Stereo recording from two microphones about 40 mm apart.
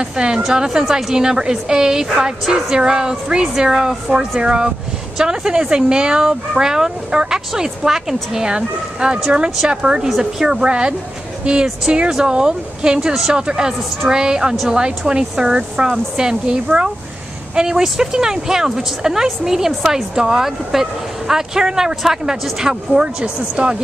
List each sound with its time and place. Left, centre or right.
0.0 s speech: centre
10.0 s speech: centre
10.6 s speech: right